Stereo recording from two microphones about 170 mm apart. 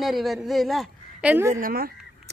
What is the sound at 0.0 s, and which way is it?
A woman's voice, centre (ahead or behind).